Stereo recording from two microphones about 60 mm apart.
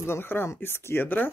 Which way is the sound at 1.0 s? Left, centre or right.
Left.